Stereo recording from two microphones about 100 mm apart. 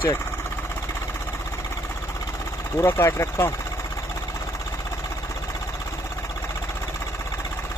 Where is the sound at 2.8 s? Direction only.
30° left (ahead or behind).